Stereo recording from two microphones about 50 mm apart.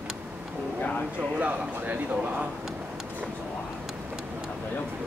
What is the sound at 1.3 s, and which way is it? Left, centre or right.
Speech, right.